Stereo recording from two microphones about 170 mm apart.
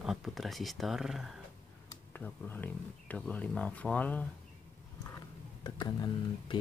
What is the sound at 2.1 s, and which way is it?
Speech, 10° left (ahead or behind).